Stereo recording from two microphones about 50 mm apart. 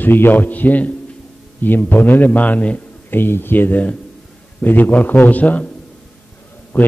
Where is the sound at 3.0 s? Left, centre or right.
Left.